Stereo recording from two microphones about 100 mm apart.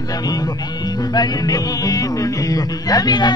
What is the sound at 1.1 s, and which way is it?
Speech, 40° left (ahead or behind).